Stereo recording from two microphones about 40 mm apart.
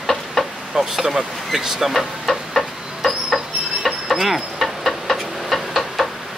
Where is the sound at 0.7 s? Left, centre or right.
Centre.